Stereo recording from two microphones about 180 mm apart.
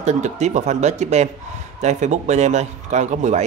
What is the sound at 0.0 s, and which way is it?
A man's voice, 40° right (ahead or behind).